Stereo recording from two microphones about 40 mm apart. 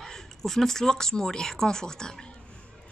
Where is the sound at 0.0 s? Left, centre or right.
Centre.